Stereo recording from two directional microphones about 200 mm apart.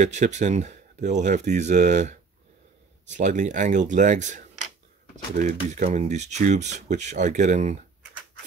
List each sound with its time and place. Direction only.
0.0 s speech: 35° right (ahead or behind)